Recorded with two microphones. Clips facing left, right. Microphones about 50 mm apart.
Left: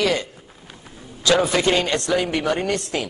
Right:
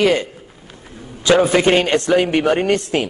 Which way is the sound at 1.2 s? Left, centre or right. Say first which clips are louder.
Right 5 dB; right.